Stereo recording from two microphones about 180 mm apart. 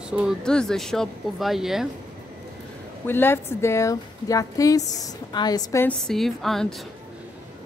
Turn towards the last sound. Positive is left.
turn(degrees=0)  # may be behind; listen again after turning